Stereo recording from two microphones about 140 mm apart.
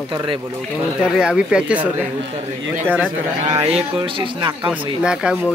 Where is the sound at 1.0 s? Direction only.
5° right (ahead or behind).